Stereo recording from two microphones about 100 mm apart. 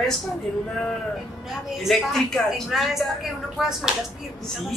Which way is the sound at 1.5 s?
Centre (ahead or behind).